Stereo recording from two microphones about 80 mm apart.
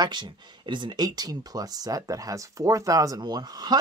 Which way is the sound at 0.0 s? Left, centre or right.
Right.